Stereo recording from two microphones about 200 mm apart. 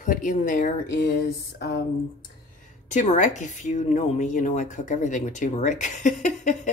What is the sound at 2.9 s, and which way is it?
A woman's voice, 35° left (ahead or behind).